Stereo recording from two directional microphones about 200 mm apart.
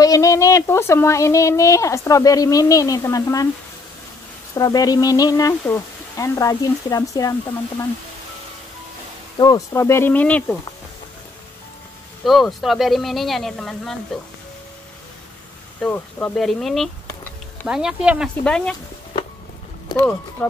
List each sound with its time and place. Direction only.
0.0 s speech: 15° left (ahead or behind)
4.6 s speech: 20° left (ahead or behind)
9.4 s speech: 15° left (ahead or behind)
12.3 s speech: centre (ahead or behind)
15.8 s speech: 10° left (ahead or behind)
20.0 s speech: 5° left (ahead or behind)